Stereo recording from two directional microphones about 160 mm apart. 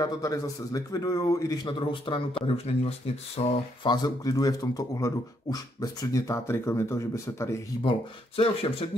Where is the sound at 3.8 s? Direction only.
25° left (ahead or behind).